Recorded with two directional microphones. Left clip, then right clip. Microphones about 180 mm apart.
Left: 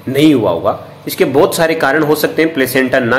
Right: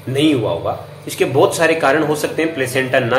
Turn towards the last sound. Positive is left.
turn(degrees=30)  # may be behind; listen again after turning